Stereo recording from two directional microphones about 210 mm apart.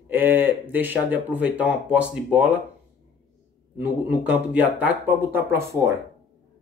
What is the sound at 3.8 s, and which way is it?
Speech, 5° right (ahead or behind).